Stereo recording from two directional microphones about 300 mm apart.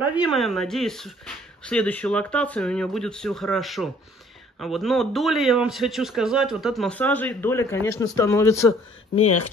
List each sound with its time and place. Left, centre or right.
0.2 s a man's voice: centre
8.6 s speech: left